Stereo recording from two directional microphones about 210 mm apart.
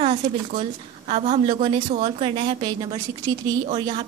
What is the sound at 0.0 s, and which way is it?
A woman's voice, 30° right (ahead or behind).